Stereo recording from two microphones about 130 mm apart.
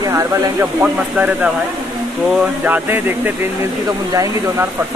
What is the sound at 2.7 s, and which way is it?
Speech, 15° right (ahead or behind).